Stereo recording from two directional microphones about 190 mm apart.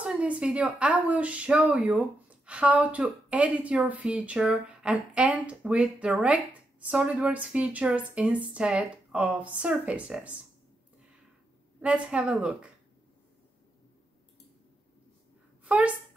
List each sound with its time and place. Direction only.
0.0 s a woman's voice: 5° right (ahead or behind)
11.8 s speech: 5° right (ahead or behind)